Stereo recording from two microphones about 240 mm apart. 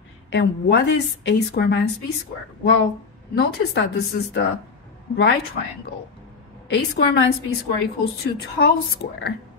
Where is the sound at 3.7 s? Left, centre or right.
Left.